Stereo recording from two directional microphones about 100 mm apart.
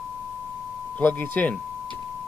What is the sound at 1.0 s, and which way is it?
Speech, 20° left (ahead or behind).